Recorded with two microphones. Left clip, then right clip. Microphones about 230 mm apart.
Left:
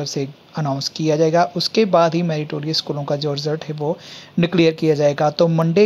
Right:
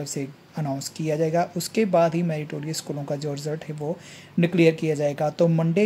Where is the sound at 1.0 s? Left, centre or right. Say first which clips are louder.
Left 8 dB; centre.